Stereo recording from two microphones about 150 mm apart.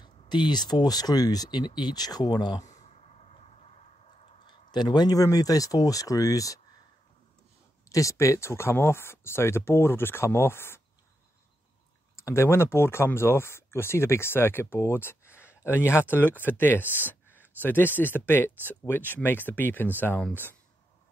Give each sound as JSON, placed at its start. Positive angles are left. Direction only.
{"t": 0.0, "sound": "speech", "side_deg": 30}
{"t": 2.6, "sound": "a sound", "side_deg": 50}
{"t": 4.5, "sound": "speech", "side_deg": 30}
{"t": 7.9, "sound": "speech", "side_deg": 20}
{"t": 12.2, "sound": "speech", "side_deg": 15}